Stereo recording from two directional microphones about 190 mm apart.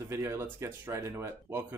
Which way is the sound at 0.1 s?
15° right (ahead or behind).